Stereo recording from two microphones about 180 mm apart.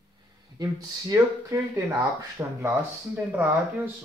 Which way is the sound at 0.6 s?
20° right (ahead or behind).